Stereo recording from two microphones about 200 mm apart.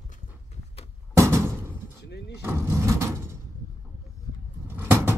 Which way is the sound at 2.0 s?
55° left (ahead or behind).